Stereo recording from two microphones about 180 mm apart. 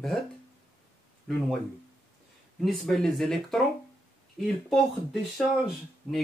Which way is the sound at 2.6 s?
Centre (ahead or behind).